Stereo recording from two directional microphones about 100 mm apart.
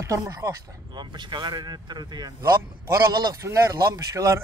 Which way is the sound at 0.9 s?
50° right (ahead or behind).